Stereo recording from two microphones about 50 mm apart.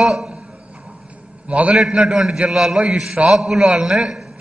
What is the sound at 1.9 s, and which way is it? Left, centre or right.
A man's voice, centre.